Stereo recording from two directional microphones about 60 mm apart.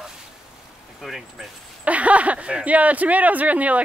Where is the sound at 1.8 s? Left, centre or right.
Right.